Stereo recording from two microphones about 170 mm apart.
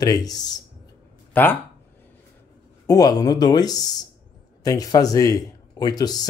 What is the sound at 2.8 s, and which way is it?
Speech, 20° left (ahead or behind).